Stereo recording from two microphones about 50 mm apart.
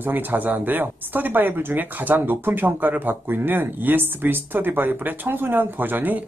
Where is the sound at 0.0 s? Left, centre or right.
Right.